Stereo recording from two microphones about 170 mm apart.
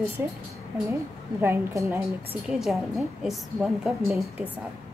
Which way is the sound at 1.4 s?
15° right (ahead or behind).